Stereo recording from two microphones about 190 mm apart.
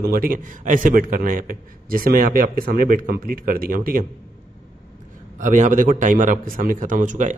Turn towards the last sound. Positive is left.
turn(degrees=-40)  # may be behind; listen again after turning